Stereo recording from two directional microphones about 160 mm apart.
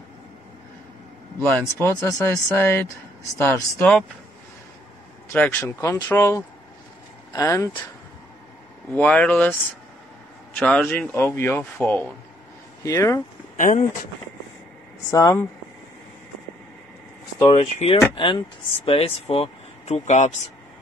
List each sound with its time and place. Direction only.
1.4 s speech: 15° left (ahead or behind)
5.3 s speech: 10° left (ahead or behind)
8.9 s speech: 10° left (ahead or behind)
10.6 s speech: 10° left (ahead or behind)
13.6 s speech: 55° left (ahead or behind)
15.0 s speech: 20° left (ahead or behind)
17.5 s speech: 35° left (ahead or behind)